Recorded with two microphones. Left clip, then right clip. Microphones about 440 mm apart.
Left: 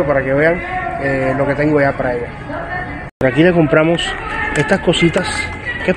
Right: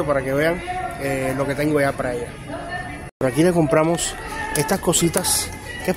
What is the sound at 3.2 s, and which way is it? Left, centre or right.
Speech, right.